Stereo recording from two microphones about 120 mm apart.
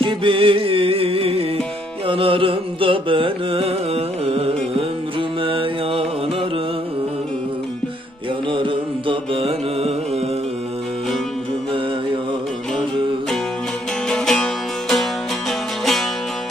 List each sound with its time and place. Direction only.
0.0 s music: 45° right (ahead or behind)
8.5 s music: 45° right (ahead or behind)
14.0 s music: 5° left (ahead or behind)